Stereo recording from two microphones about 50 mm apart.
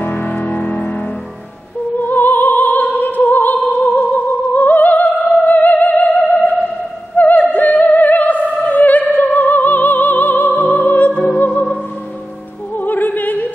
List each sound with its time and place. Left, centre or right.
0.0 s music: left
2.0 s opera: left
3.8 s music: left
7.2 s opera: left
10.5 s music: left
12.7 s opera: left